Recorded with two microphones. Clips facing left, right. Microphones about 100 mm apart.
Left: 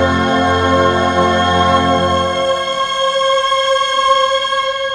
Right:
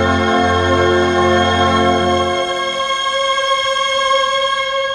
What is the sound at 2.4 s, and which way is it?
Music, 40° left (ahead or behind).